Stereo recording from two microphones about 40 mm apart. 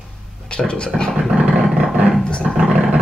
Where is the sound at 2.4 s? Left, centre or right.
Right.